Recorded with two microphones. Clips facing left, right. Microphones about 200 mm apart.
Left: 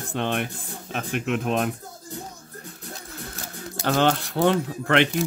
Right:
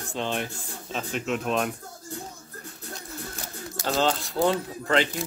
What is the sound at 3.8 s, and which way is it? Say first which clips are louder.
Speech: left 4 dB; 65° left (ahead or behind).